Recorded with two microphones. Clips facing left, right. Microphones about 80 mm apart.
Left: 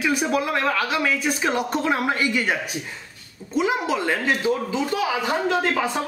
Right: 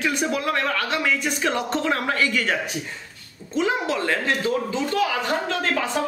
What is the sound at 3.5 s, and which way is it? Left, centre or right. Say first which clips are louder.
Speech: left 1 dB; centre.